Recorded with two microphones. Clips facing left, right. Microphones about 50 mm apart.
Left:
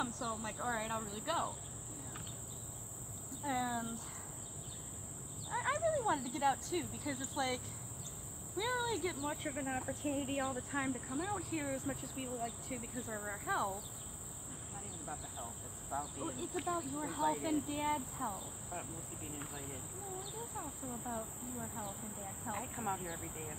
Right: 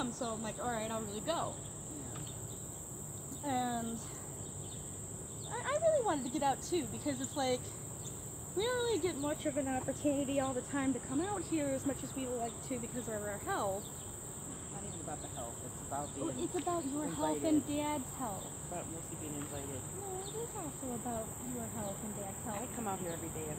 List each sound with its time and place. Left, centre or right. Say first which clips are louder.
0.0 s speech: right 1 dB; centre
3.4 s speech: right 2 dB; centre
5.5 s speech: right 3 dB; centre
16.2 s speech: right 4 dB; centre
22.5 s speech: left 1 dB; centre